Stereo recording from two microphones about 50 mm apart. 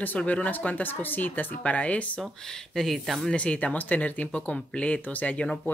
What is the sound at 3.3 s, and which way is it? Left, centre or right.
Speech, left.